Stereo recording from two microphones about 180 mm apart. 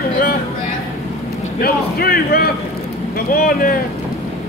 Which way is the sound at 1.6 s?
60° left (ahead or behind).